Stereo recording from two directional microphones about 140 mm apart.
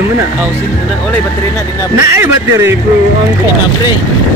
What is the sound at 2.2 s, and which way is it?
Speech, 15° right (ahead or behind).